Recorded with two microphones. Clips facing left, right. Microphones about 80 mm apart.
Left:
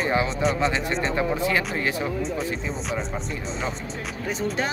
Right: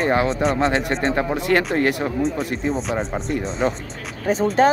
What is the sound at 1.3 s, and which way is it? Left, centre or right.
Speech, right.